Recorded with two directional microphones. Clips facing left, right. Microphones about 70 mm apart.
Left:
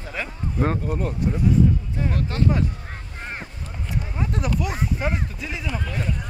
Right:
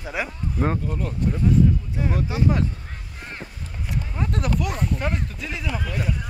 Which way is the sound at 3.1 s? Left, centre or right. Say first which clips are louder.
Left 3 dB; left.